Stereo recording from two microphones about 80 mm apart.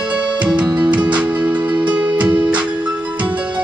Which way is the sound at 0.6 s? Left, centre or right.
Centre.